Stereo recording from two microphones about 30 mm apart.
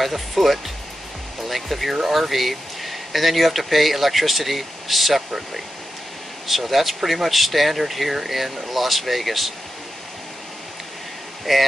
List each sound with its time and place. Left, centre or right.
0.0 s speech: centre
6.4 s speech: centre
11.5 s speech: centre